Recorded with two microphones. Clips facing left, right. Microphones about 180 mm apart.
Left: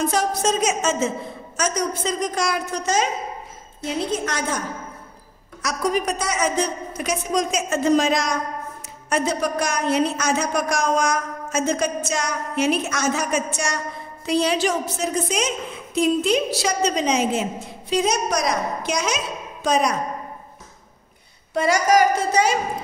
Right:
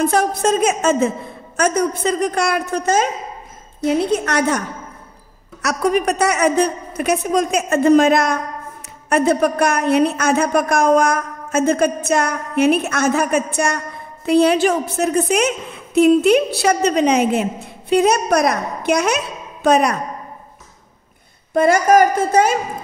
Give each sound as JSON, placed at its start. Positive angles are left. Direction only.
{"t": 0.0, "sound": "a woman's voice", "side_deg": -55}
{"t": 21.5, "sound": "a woman's voice", "side_deg": -55}